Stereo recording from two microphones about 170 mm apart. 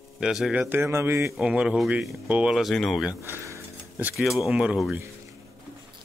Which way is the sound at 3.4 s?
15° right (ahead or behind).